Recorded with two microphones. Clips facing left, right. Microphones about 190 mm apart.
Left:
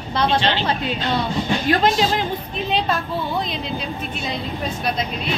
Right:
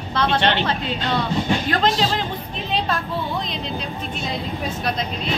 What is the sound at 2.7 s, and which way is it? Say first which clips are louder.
Speech: left 2 dB; centre (ahead or behind).